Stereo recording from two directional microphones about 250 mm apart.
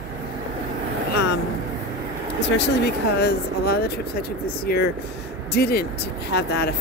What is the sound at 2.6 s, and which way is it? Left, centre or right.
Speech, left.